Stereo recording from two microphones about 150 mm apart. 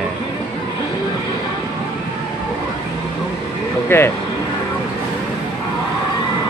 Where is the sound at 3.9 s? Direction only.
15° left (ahead or behind).